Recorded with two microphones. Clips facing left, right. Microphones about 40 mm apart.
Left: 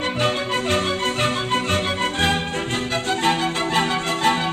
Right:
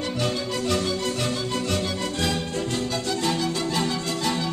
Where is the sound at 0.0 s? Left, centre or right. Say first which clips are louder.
Left 5 dB; left.